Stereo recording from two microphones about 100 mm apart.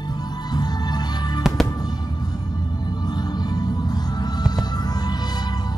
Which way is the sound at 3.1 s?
45° left (ahead or behind).